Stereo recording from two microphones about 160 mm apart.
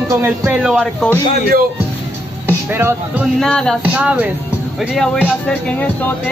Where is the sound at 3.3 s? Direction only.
5° left (ahead or behind).